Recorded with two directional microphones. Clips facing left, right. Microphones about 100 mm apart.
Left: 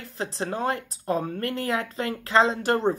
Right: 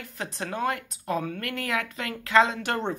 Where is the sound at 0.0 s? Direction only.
30° left (ahead or behind).